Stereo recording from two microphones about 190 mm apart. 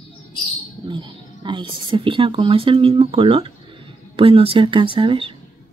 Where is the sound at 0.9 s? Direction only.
25° right (ahead or behind).